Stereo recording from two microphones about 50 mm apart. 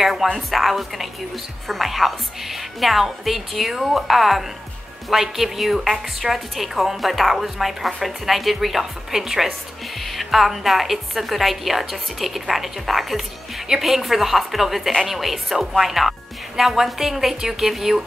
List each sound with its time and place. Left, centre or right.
0.0 s a woman's voice: centre